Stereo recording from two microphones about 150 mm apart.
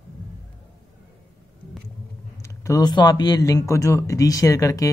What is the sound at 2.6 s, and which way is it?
Speech, 25° left (ahead or behind).